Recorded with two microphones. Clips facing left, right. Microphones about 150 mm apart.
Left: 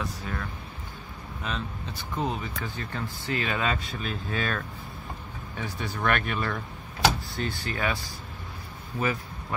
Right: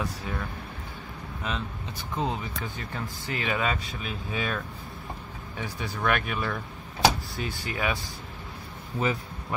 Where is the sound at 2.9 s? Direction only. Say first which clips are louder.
Left 2 dB; 15° right (ahead or behind).